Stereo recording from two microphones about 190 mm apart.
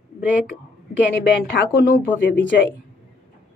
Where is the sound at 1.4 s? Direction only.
65° left (ahead or behind).